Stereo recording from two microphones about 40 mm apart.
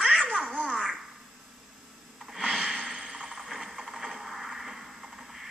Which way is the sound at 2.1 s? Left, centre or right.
Centre.